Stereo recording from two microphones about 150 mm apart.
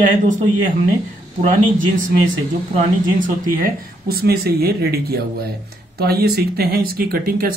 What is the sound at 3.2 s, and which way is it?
Speech, 70° right (ahead or behind).